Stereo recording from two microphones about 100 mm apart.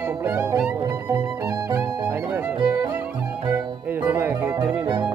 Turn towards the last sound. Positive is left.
turn(degrees=-15)  # may be behind; listen again after turning